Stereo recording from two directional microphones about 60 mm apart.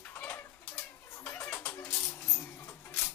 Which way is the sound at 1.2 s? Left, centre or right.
Left.